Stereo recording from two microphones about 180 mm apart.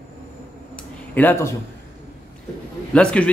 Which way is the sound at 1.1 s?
10° left (ahead or behind).